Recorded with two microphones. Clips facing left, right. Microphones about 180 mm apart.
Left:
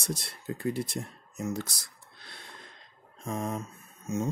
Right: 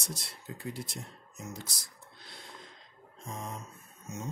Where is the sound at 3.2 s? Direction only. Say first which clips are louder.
Left 8 dB; 60° left (ahead or behind).